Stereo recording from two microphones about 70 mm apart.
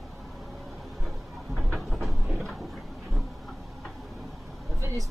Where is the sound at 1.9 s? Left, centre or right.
Centre.